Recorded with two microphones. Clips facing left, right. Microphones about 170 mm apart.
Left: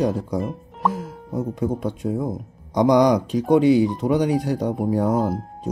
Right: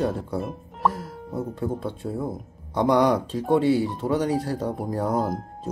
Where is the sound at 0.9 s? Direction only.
15° left (ahead or behind).